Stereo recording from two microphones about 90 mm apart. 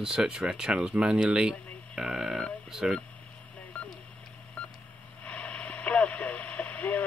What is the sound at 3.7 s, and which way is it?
Telephone dialing, 15° left (ahead or behind).